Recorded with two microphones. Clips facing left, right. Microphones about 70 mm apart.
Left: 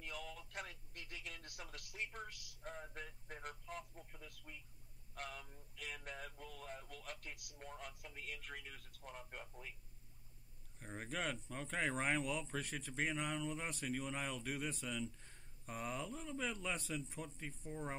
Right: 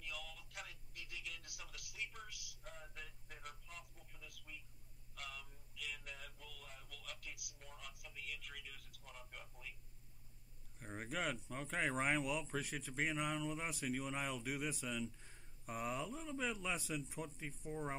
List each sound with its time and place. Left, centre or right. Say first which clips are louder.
0.0 s radio: left 3 dB; left
2.1 s speech: left 4 dB; left
10.8 s speech: right 1 dB; centre